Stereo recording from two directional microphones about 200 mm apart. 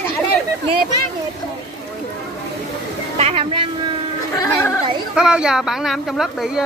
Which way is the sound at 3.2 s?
30° right (ahead or behind).